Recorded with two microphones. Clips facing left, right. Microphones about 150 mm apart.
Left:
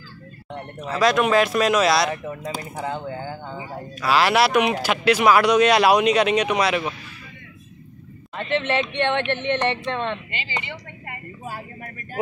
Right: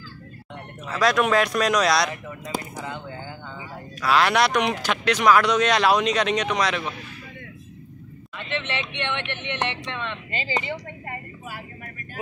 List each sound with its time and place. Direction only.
1.0 s speech: centre (ahead or behind)
2.0 s speech: 60° left (ahead or behind)
2.9 s a sound: 40° left (ahead or behind)
4.0 s speech: 5° left (ahead or behind)
8.4 s speech: 40° left (ahead or behind)
10.3 s speech: 45° right (ahead or behind)